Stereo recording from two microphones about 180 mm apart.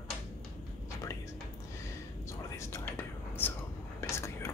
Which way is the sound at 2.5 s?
15° left (ahead or behind).